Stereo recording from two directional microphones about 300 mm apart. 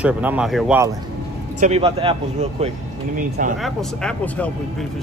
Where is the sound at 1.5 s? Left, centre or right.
Right.